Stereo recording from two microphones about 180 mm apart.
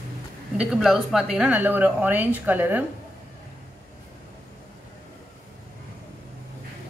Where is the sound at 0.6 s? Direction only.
Centre (ahead or behind).